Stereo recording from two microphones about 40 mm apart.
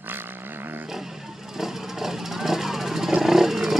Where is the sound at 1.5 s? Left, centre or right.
Centre.